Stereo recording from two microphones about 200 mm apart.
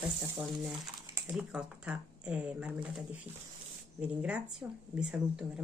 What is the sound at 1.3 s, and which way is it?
Speech, 5° right (ahead or behind).